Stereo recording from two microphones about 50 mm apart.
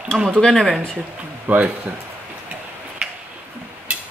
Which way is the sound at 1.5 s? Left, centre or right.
Right.